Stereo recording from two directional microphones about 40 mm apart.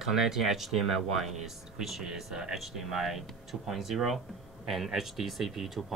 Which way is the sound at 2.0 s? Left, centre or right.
Centre.